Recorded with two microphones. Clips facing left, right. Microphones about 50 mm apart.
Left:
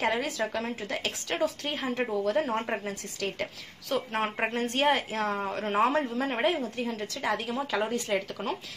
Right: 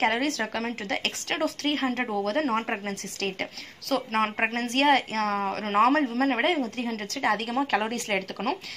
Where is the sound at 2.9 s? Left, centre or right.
Right.